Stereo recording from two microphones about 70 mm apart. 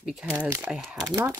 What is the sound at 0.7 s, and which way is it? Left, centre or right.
Speech, centre.